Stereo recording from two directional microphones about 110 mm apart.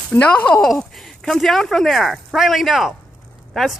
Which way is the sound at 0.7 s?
Centre (ahead or behind).